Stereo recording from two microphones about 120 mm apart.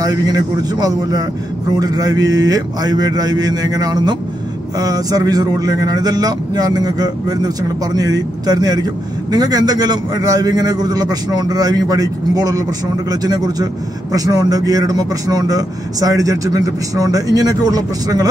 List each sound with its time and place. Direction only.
0.0 s a man's voice: 30° right (ahead or behind)